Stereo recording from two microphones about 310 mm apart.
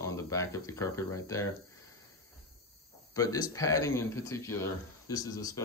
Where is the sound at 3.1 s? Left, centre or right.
Centre.